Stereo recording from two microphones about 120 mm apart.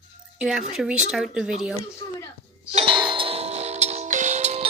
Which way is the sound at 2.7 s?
45° right (ahead or behind).